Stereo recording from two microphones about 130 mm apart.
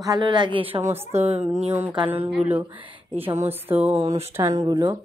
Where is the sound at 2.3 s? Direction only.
10° right (ahead or behind).